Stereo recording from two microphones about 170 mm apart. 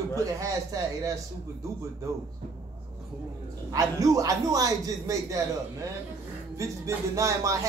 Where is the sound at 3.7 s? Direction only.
20° right (ahead or behind).